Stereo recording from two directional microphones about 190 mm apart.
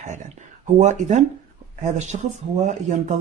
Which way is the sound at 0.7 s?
40° right (ahead or behind).